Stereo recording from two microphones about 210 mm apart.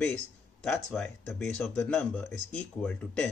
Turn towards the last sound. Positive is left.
turn(degrees=5)  # may be behind; listen again after turning